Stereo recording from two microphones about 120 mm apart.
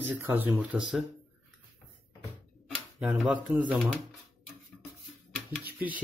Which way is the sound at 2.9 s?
10° right (ahead or behind).